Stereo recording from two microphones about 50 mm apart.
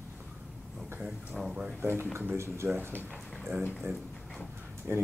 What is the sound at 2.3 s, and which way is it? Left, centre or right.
Speech, right.